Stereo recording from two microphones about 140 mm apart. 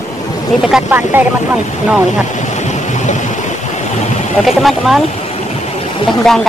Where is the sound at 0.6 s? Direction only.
10° right (ahead or behind).